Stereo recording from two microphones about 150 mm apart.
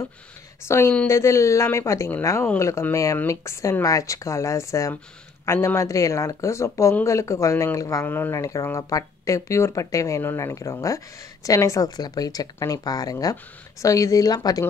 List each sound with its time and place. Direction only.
0.7 s speech: 15° left (ahead or behind)